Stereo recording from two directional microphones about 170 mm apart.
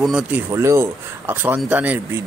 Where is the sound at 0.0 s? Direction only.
5° right (ahead or behind).